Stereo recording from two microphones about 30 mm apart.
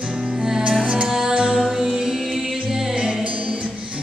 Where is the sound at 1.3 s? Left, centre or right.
Right.